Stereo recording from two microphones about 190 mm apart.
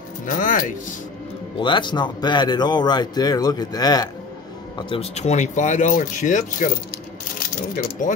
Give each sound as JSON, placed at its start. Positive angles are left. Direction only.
{"t": 0.3, "sound": "speech", "side_deg": 45}
{"t": 1.6, "sound": "speech", "side_deg": 25}